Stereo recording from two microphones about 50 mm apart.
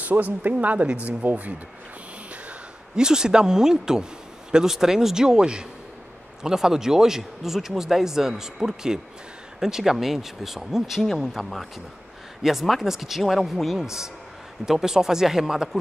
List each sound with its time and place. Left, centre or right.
0.0 s speech: right
3.0 s speech: centre